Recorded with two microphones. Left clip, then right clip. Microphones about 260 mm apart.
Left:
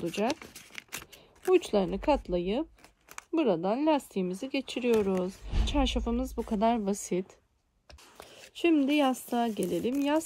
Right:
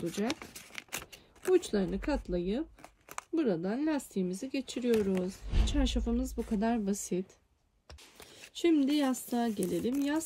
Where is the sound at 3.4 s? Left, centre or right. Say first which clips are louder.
Left 8 dB; centre.